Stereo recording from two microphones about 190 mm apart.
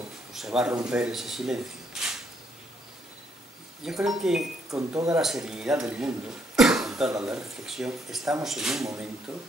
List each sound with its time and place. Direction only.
0.3 s speech: centre (ahead or behind)
3.8 s speech: centre (ahead or behind)
4.6 s speech: 15° right (ahead or behind)
5.2 s speech: centre (ahead or behind)